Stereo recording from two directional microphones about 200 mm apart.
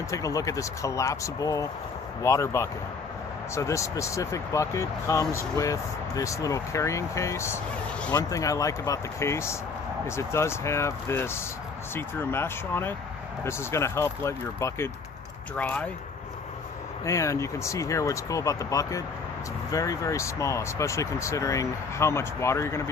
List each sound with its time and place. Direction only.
0.1 s speech: 15° left (ahead or behind)
17.0 s speech: 15° left (ahead or behind)